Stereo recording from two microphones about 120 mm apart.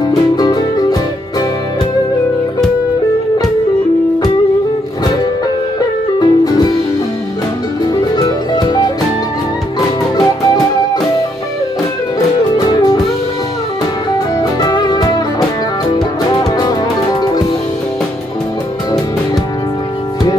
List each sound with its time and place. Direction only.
0.0 s music: 35° left (ahead or behind)
6.1 s music: 35° left (ahead or behind)
7.8 s music: 35° left (ahead or behind)
12.2 s music: 30° left (ahead or behind)
14.4 s music: 35° left (ahead or behind)
16.3 s music: 35° left (ahead or behind)